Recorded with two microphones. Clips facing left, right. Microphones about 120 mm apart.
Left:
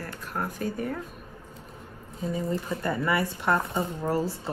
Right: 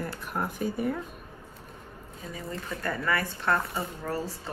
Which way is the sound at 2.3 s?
30° left (ahead or behind).